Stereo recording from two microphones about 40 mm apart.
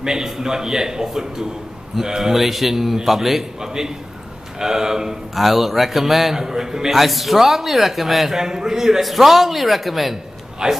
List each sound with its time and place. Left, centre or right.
0.0 s a man's voice: centre
5.3 s a man's voice: centre
8.4 s a man's voice: centre
10.6 s a man's voice: centre